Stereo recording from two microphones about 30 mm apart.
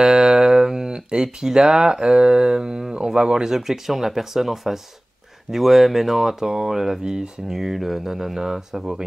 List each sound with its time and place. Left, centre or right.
0.0 s speech: right
3.4 s speech: centre
6.4 s speech: right
6.7 s speech: centre